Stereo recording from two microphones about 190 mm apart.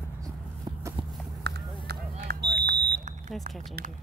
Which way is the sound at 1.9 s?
55° right (ahead or behind).